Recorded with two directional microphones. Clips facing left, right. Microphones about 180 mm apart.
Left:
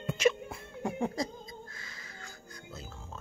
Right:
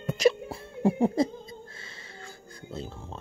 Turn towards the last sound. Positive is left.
turn(degrees=-30)  # may be behind; listen again after turning